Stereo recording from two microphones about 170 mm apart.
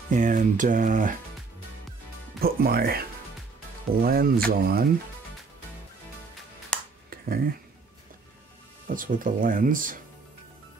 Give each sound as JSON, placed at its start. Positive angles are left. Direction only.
{"t": 0.1, "sound": "speech", "side_deg": -50}
{"t": 2.4, "sound": "speech", "side_deg": -60}
{"t": 6.7, "sound": "finger snapping", "side_deg": 5}
{"t": 7.1, "sound": "a sound", "side_deg": -60}
{"t": 8.8, "sound": "speech", "side_deg": -55}